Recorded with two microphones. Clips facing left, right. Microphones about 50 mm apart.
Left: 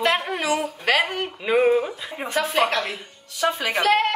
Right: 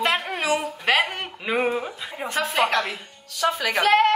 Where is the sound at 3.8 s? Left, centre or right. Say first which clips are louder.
Right 2 dB; right.